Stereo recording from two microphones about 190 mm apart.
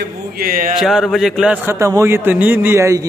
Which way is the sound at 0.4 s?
50° right (ahead or behind).